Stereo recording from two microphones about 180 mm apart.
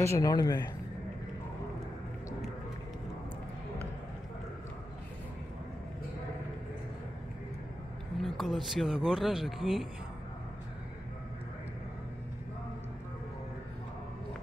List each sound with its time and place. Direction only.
0.0 s speech: 15° left (ahead or behind)
8.2 s speech: centre (ahead or behind)